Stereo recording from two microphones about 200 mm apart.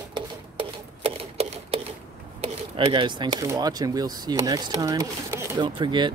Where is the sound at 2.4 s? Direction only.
30° right (ahead or behind).